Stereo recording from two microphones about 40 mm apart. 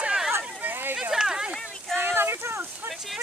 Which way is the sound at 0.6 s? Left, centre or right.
Right.